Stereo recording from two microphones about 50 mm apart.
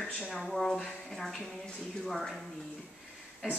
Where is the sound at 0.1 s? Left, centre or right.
Centre.